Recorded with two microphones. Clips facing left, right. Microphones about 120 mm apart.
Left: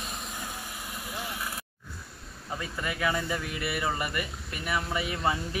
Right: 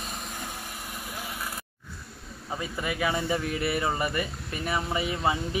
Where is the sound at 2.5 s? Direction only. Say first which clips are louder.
Right 2 dB; 15° right (ahead or behind).